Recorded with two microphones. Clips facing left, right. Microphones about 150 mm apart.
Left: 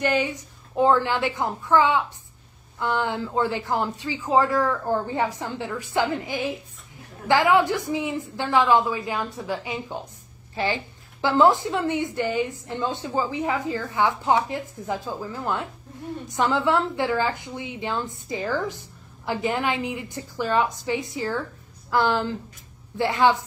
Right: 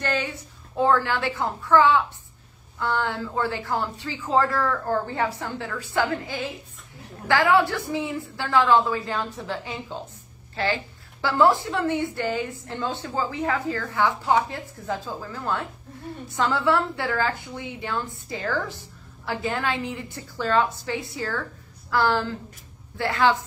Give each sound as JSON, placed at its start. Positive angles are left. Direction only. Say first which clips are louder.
{"t": 0.0, "sound": "a woman's voice", "louder": "left 4 dB", "side_deg": 15}